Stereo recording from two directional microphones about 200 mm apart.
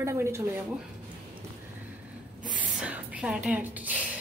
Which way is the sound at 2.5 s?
5° right (ahead or behind).